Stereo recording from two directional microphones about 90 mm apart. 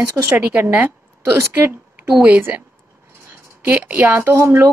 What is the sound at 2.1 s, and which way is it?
Speech, 15° right (ahead or behind).